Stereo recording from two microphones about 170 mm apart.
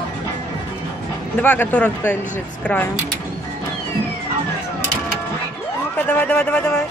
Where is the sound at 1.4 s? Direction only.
10° left (ahead or behind).